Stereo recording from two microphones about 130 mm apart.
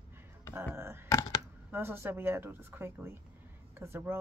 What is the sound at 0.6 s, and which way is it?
Speech, 20° right (ahead or behind).